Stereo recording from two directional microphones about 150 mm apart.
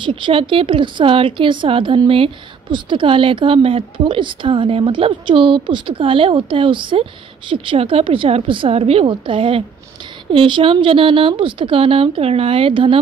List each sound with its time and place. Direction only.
0.0 s a woman's voice: 35° right (ahead or behind)